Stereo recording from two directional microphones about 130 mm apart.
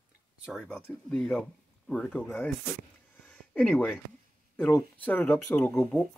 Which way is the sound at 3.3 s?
10° left (ahead or behind).